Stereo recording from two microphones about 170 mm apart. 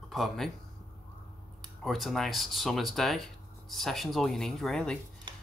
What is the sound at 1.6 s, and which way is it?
Speech, centre (ahead or behind).